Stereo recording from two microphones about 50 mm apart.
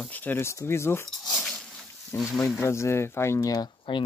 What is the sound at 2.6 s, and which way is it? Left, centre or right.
Speech, left.